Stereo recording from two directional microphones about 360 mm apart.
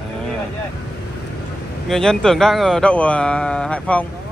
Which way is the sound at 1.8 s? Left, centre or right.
Centre.